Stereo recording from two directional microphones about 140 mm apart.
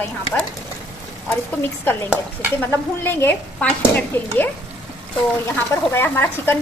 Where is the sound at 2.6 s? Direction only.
15° left (ahead or behind).